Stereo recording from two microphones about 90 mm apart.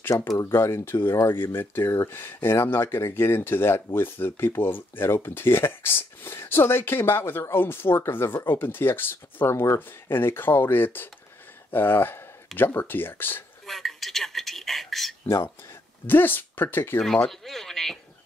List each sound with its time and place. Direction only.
0.1 s speech: 35° left (ahead or behind)
13.7 s a sound: centre (ahead or behind)
15.2 s speech: 30° left (ahead or behind)
17.3 s speech: 5° left (ahead or behind)